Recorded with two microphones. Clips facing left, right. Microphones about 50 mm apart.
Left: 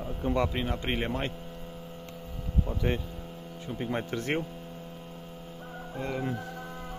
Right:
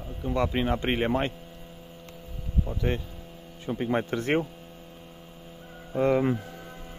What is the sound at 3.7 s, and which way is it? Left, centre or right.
Speech, centre.